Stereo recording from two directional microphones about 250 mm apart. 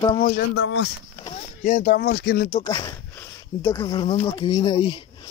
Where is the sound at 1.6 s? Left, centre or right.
Left.